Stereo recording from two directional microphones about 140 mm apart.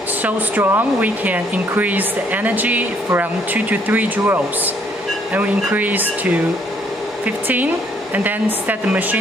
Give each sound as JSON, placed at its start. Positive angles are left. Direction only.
{"t": 0.2, "sound": "speech", "side_deg": -15}